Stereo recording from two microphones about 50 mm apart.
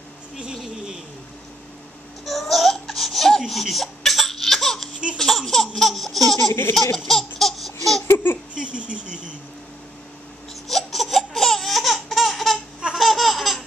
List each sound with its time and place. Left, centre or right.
2.2 s laughter: centre
5.8 s a sound: centre
7.0 s laughter: centre
8.1 s laughter: left
8.5 s speech: right
10.7 s laughter: centre